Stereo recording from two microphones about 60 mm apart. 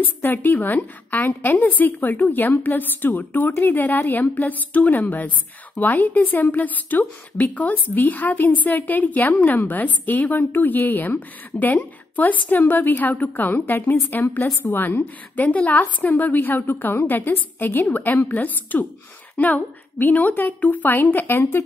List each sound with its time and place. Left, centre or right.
0.2 s a woman's voice: left